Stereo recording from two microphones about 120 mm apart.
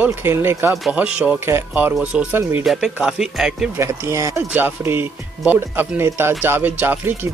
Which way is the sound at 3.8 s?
25° right (ahead or behind).